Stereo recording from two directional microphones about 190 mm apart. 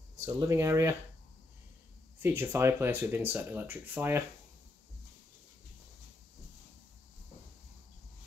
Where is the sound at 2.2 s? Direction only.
15° right (ahead or behind).